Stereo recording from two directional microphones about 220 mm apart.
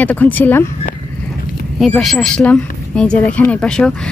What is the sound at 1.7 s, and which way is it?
A woman's voice, centre (ahead or behind).